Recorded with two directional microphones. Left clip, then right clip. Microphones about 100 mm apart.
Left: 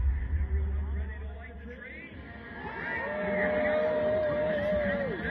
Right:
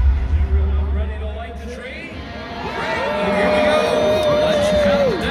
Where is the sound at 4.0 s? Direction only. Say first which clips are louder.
Right 12 dB; 30° right (ahead or behind).